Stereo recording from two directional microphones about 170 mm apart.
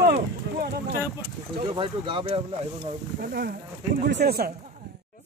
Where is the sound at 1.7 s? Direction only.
30° right (ahead or behind).